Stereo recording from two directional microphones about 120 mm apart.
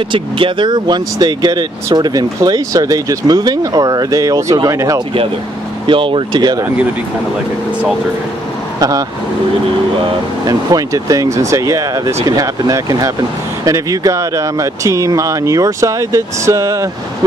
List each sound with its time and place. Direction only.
0.1 s speech: 45° right (ahead or behind); by 5.0 s 30° right (ahead or behind)
5.9 s speech: 45° right (ahead or behind)
8.7 s speech: 30° right (ahead or behind)
10.4 s speech: 30° right (ahead or behind)